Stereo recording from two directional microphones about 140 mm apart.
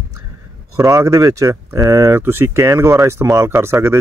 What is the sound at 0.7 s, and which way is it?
Speech, 20° right (ahead or behind).